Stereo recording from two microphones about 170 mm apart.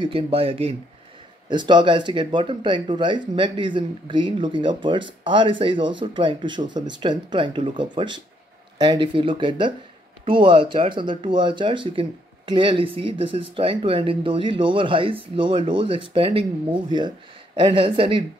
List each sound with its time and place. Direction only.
0.0 s speech: 35° right (ahead or behind)
17.6 s speech: 30° right (ahead or behind)